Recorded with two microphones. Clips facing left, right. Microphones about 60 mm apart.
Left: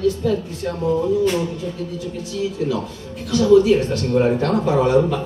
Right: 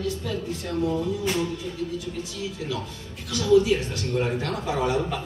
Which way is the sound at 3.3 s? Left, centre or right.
Left.